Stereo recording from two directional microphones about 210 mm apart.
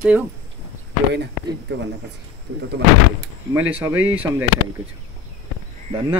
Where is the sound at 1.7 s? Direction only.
55° right (ahead or behind).